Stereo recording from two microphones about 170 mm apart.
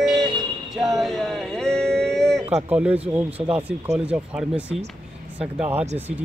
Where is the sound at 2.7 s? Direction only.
10° right (ahead or behind).